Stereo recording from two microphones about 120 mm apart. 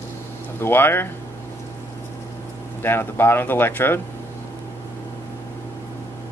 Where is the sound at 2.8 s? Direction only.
20° left (ahead or behind).